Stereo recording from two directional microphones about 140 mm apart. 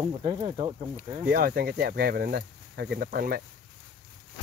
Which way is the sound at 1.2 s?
90° right.